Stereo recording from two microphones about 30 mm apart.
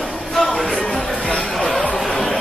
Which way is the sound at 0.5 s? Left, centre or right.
Centre.